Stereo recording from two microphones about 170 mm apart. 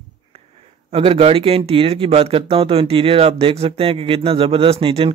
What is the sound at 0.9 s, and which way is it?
Speech, 35° right (ahead or behind).